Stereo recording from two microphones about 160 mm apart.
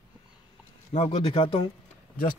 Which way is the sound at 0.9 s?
40° left (ahead or behind).